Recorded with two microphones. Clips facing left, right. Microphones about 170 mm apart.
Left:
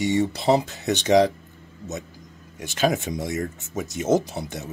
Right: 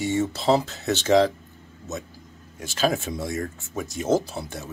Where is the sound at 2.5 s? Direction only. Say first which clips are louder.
Left 1 dB; 20° left (ahead or behind).